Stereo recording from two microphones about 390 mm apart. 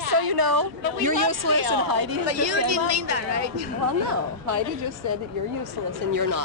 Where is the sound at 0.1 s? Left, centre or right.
Right.